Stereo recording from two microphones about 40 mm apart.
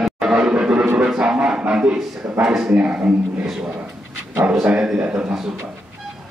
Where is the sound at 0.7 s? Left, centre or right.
Right.